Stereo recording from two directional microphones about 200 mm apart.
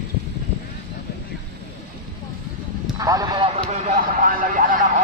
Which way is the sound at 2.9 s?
15° right (ahead or behind).